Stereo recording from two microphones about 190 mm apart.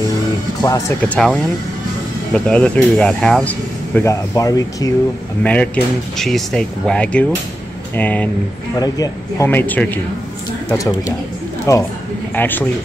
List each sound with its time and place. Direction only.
0.6 s speech: 20° left (ahead or behind)
1.0 s speech: 5° left (ahead or behind)
5.4 s speech: 5° left (ahead or behind)
8.7 s speech: 20° left (ahead or behind)